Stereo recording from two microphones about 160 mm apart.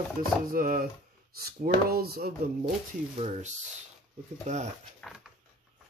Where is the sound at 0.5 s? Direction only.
65° right (ahead or behind).